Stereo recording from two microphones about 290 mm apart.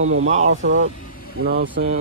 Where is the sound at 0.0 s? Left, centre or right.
Right.